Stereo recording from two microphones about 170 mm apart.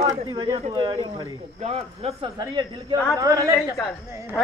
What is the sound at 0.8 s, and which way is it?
Speech, 20° right (ahead or behind).